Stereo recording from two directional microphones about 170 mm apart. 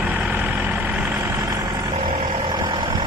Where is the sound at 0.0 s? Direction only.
10° right (ahead or behind).